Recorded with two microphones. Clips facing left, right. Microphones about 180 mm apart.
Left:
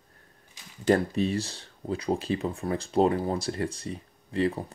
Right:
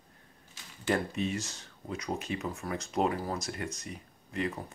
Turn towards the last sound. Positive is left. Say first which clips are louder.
# left 7 dB
turn(degrees=30)  # may be behind; listen again after turning